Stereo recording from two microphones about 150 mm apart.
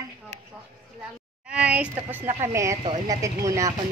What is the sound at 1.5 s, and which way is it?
A woman's voice, 10° right (ahead or behind).